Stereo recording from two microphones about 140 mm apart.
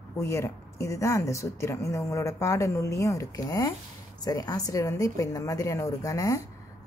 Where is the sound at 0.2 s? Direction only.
20° left (ahead or behind).